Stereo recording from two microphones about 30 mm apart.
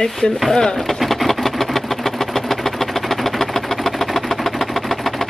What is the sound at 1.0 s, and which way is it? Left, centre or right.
Vehicle, centre.